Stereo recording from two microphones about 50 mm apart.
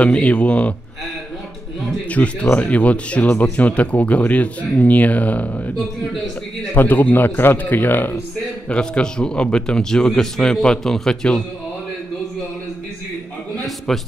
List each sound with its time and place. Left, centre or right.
0.0 s speech: left
2.0 s a man's voice: left
6.7 s a man's voice: left
8.6 s a man's voice: left
13.7 s a man's voice: centre